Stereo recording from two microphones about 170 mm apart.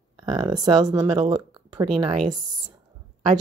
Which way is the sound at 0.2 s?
20° right (ahead or behind).